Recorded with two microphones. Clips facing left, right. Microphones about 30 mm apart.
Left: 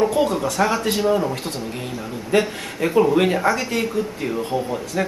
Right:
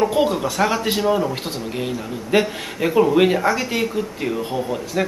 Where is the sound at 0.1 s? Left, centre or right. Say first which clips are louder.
Right 1 dB; centre.